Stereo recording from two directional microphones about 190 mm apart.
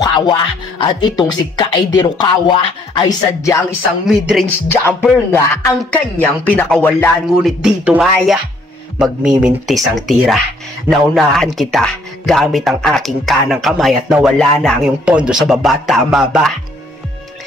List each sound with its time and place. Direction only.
0.0 s a woman's voice: 25° left (ahead or behind)
4.0 s speech: centre (ahead or behind)
4.6 s speech: 10° left (ahead or behind)